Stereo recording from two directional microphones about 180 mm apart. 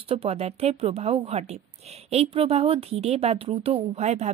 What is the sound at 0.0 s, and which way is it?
Speech, 30° right (ahead or behind).